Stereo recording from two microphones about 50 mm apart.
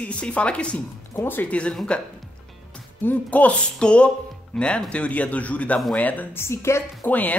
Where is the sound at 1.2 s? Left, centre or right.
Left.